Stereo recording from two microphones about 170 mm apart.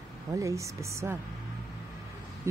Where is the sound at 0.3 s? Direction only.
20° right (ahead or behind).